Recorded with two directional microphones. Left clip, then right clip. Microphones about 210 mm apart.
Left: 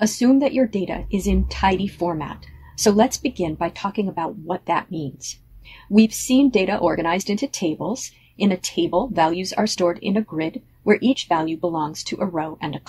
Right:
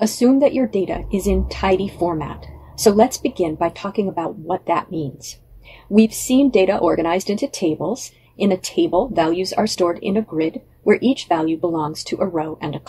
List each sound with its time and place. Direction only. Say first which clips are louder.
0.0 s speech: right 3 dB; 35° left (ahead or behind)
6.2 s speech: right 3 dB; 35° left (ahead or behind)